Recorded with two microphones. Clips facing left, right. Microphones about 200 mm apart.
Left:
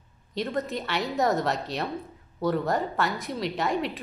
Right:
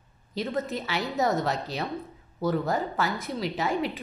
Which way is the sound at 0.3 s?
Centre (ahead or behind).